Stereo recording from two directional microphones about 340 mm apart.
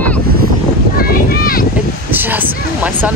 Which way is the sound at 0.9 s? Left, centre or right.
Left.